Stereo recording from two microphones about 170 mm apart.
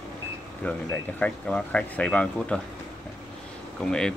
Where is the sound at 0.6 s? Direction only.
5° left (ahead or behind).